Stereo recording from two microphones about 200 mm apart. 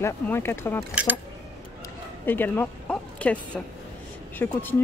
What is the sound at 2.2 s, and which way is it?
Speech, 10° left (ahead or behind).